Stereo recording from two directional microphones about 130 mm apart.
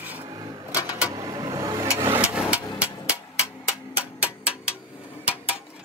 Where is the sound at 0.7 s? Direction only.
25° left (ahead or behind).